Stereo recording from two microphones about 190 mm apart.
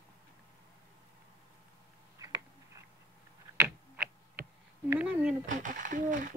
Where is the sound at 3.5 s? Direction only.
10° right (ahead or behind).